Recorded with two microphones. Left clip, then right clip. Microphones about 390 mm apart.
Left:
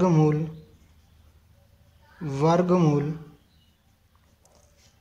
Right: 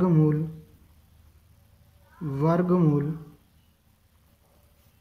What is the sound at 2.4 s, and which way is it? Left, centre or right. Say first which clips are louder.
Speech: left 3 dB; centre.